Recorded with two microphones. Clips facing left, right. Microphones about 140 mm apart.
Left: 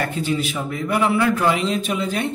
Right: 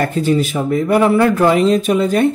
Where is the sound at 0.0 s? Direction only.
45° right (ahead or behind).